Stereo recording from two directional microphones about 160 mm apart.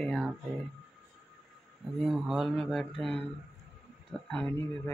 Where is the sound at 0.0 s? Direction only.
Centre (ahead or behind).